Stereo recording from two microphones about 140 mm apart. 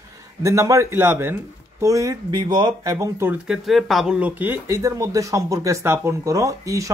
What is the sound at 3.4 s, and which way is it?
Speech, 5° right (ahead or behind).